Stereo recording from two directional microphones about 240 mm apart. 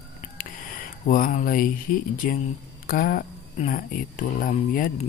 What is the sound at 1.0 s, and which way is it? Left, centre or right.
Speech, left.